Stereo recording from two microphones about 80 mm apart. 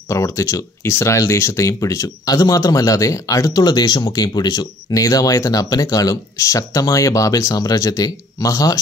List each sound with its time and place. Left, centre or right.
0.1 s speech: left